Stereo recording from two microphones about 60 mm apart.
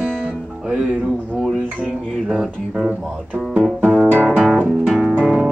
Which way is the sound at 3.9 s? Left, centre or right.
Right.